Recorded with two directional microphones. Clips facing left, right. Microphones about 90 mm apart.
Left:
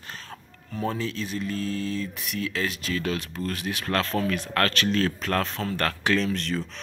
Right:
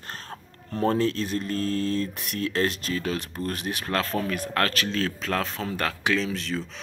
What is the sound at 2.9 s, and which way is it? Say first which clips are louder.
Speech: even; 20° right (ahead or behind).